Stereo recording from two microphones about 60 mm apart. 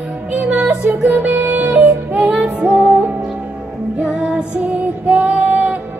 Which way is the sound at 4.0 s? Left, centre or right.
Centre.